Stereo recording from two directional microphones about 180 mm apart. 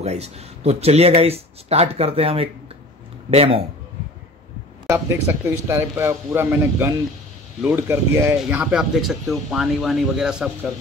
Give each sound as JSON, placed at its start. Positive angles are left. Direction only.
{"t": 0.0, "sound": "speech", "side_deg": -35}
{"t": 4.8, "sound": "speech", "side_deg": -15}